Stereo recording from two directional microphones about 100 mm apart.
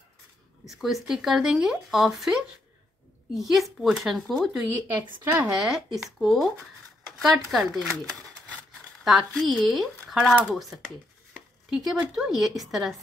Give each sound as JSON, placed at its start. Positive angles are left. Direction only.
{"t": 0.7, "sound": "speech", "side_deg": -5}
{"t": 3.3, "sound": "speech", "side_deg": 0}
{"t": 5.2, "sound": "speech", "side_deg": -25}
{"t": 5.6, "sound": "speech", "side_deg": -5}
{"t": 9.0, "sound": "speech", "side_deg": 0}
{"t": 11.7, "sound": "speech", "side_deg": -5}